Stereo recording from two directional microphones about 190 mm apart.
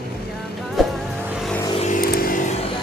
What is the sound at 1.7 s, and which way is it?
Vehicle, 40° left (ahead or behind).